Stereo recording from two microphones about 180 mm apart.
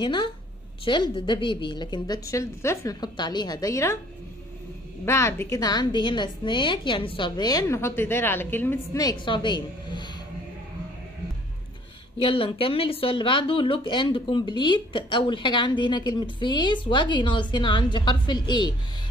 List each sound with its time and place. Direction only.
0.0 s speech: 25° left (ahead or behind)
5.0 s speech: 15° left (ahead or behind)
12.2 s speech: 30° left (ahead or behind)